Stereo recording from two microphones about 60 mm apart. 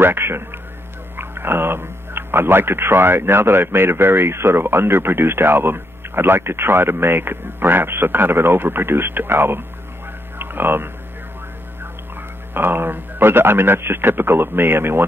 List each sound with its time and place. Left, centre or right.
0.0 s a man's voice: right
12.5 s speech: right